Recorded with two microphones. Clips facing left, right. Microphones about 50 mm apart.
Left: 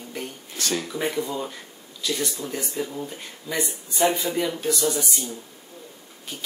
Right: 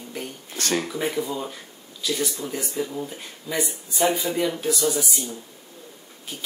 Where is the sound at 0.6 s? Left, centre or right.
Right.